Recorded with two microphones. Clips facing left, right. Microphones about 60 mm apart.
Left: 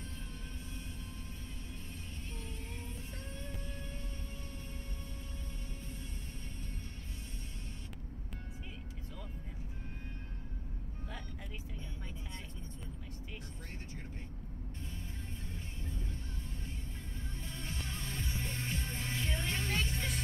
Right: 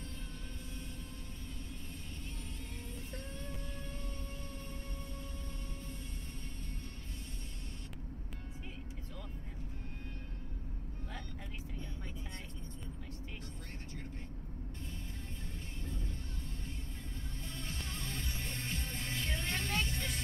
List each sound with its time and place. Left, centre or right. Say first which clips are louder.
17.5 s music: left 1 dB; left